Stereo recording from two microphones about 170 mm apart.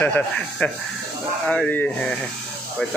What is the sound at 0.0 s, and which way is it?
Speech, 10° left (ahead or behind).